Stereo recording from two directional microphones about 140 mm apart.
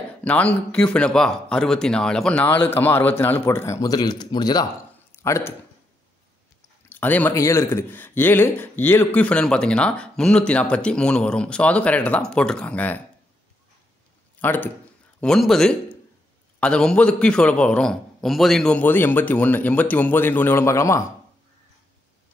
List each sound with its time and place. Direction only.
0.2 s a man's voice: 10° left (ahead or behind)
6.9 s speech: 10° left (ahead or behind)
14.4 s a man's voice: 15° left (ahead or behind)